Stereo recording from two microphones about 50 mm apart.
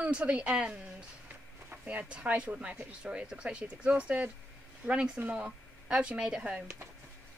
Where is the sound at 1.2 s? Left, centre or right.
Right.